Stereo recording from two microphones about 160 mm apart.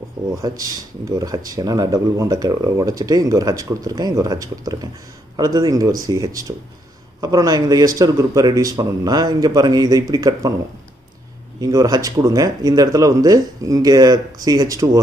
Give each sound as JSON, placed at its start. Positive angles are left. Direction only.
{"t": 0.4, "sound": "speech", "side_deg": -20}
{"t": 11.6, "sound": "speech", "side_deg": -25}